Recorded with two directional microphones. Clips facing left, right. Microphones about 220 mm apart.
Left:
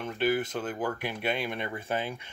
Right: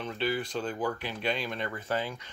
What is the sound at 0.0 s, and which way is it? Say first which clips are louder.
Speech: left 3 dB; 50° left (ahead or behind).